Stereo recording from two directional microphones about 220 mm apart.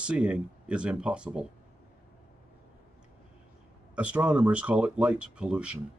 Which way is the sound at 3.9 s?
5° right (ahead or behind).